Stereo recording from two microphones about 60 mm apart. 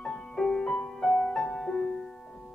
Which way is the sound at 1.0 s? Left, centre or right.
Centre.